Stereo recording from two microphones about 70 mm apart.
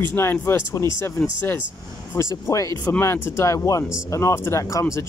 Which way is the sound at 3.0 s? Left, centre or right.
Left.